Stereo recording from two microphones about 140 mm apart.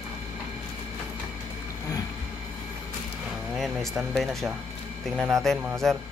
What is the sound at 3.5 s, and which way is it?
Speech, centre (ahead or behind).